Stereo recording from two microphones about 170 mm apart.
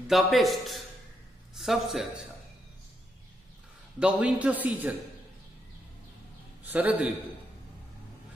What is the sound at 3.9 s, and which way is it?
A woman's voice, 5° right (ahead or behind).